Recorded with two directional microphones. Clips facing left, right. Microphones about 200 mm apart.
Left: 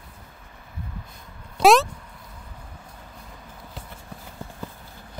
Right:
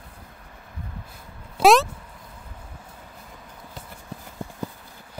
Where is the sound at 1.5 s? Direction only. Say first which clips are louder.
Even; centre (ahead or behind).